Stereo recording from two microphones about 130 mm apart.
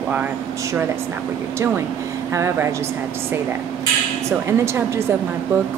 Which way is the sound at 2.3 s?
20° right (ahead or behind).